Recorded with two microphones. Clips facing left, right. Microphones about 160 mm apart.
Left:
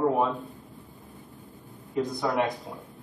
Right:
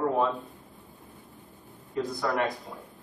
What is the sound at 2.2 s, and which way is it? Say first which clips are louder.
Speech: left 1 dB; 15° left (ahead or behind).